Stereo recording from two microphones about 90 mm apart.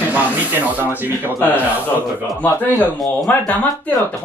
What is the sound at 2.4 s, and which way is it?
Speech, 20° left (ahead or behind).